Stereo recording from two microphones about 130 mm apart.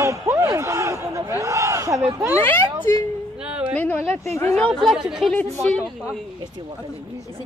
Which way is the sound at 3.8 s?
15° left (ahead or behind).